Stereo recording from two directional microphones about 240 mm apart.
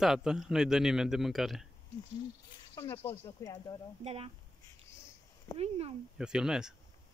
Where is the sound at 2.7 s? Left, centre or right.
Centre.